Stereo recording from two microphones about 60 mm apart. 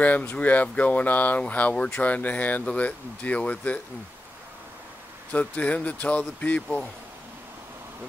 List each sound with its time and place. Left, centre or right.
0.0 s speech: left
5.3 s speech: left